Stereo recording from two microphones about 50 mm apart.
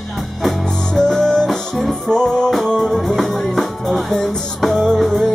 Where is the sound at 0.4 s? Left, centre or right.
Centre.